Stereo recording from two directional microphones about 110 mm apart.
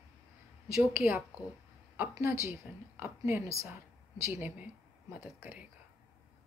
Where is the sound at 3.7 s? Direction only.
30° right (ahead or behind).